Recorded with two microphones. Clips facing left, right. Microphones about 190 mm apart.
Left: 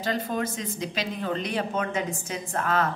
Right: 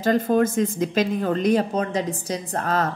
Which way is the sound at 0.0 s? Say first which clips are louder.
Right 9 dB; 50° right (ahead or behind).